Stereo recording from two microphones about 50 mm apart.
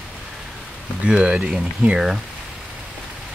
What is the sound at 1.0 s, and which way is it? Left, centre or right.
Speech, centre.